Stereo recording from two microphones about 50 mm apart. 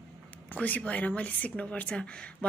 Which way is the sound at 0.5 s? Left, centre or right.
Left.